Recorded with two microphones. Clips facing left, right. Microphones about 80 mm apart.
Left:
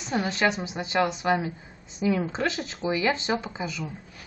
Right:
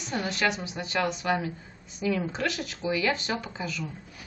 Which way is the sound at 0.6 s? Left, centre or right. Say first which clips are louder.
Left 4 dB; centre.